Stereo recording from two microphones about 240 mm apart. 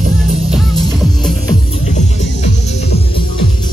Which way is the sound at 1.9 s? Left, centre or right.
Left.